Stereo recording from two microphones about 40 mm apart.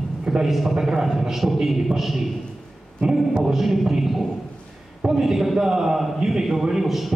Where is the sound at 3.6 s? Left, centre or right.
Centre.